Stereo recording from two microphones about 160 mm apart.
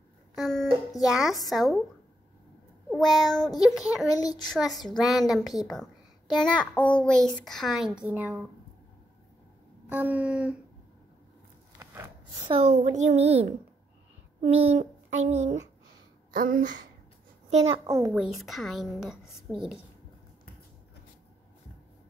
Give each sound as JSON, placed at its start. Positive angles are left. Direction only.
{"t": 0.4, "sound": "music", "side_deg": 5}
{"t": 1.0, "sound": "a child's voice", "side_deg": 0}
{"t": 2.9, "sound": "a child's voice", "side_deg": 0}
{"t": 4.1, "sound": "a child's voice", "side_deg": 20}
{"t": 4.6, "sound": "a child's voice", "side_deg": 0}
{"t": 9.8, "sound": "a sound", "side_deg": -10}
{"t": 11.8, "sound": "wood", "side_deg": -15}
{"t": 12.4, "sound": "a sound", "side_deg": -40}
{"t": 14.5, "sound": "a sound", "side_deg": -40}
{"t": 16.3, "sound": "speech", "side_deg": -60}
{"t": 17.5, "sound": "a child's voice", "side_deg": -45}
{"t": 17.8, "sound": "a woman's voice", "side_deg": -20}
{"t": 18.1, "sound": "a child's voice", "side_deg": 0}